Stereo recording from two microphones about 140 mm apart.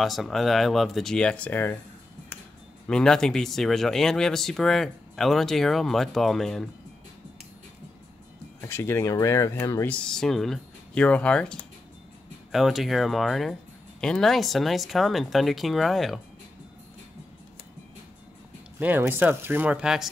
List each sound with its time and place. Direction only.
0.0 s speech: centre (ahead or behind)
2.9 s speech: 5° left (ahead or behind)
8.5 s speech: 15° left (ahead or behind)
9.9 s speech: 5° left (ahead or behind)
18.8 s speech: 15° right (ahead or behind)